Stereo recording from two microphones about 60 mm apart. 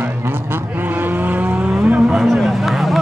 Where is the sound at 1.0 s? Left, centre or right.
Right.